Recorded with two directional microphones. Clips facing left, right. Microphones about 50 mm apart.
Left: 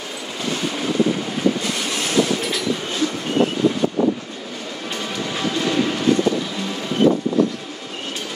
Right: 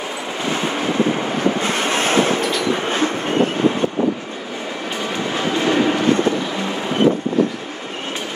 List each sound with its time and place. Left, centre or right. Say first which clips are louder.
0.5 s vehicle: right 2 dB; right
2.6 s train: right 4 dB; right
5.1 s train: right 3 dB; right